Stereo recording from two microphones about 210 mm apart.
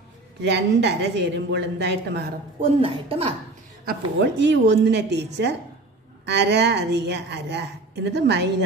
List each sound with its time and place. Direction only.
0.4 s a woman's voice: 55° right (ahead or behind)
2.6 s a woman's voice: 25° right (ahead or behind)
3.8 s a woman's voice: 55° right (ahead or behind)